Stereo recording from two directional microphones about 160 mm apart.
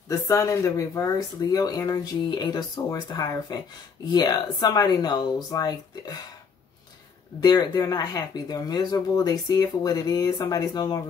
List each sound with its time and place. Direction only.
0.1 s speech: 20° left (ahead or behind)
7.3 s speech: 25° left (ahead or behind)